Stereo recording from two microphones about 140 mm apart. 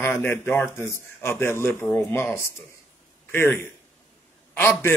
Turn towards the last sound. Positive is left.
turn(degrees=15)  # may be behind; listen again after turning